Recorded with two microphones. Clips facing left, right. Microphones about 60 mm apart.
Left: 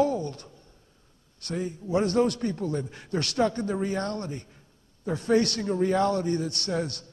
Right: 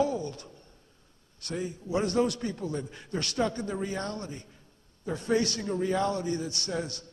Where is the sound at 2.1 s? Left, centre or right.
Left.